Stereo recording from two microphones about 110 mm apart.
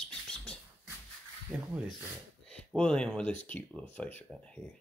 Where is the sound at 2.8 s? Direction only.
10° left (ahead or behind).